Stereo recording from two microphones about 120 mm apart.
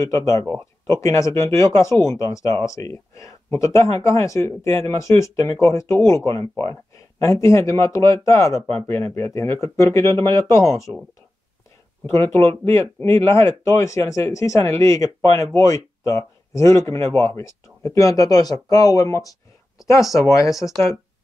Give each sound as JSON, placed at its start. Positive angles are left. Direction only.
{"t": 0.0, "sound": "speech", "side_deg": 25}
{"t": 12.1, "sound": "speech", "side_deg": 25}
{"t": 20.0, "sound": "speech", "side_deg": 0}
{"t": 20.2, "sound": "speech", "side_deg": 25}